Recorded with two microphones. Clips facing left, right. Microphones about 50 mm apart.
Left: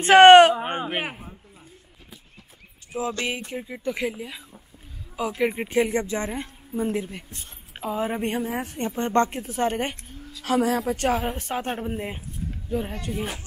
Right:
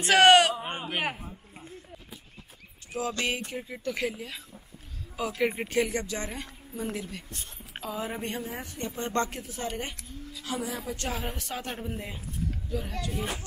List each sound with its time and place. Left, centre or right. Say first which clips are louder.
0.0 s speech: left 8 dB; left
0.6 s a sound: left 5 dB; left
1.0 s a man's voice: right 1 dB; centre
2.9 s speech: left 3 dB; centre
5.9 s a woman's voice: left 6 dB; left
8.3 s a woman's voice: left 8 dB; left
9.5 s speech: left 9 dB; left
11.2 s a woman's voice: left 7 dB; left